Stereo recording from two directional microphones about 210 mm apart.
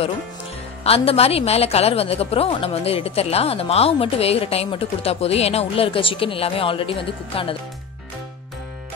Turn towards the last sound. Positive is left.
turn(degrees=25)  # may be behind; listen again after turning